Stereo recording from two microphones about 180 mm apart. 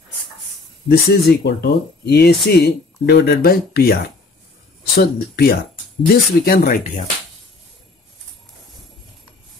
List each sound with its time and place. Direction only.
0.8 s speech: 65° left (ahead or behind)